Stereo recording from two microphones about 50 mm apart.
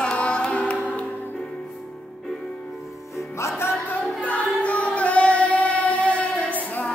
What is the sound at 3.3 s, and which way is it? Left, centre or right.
Music, left.